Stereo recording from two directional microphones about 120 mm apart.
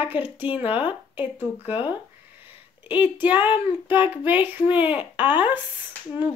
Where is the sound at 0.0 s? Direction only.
15° right (ahead or behind).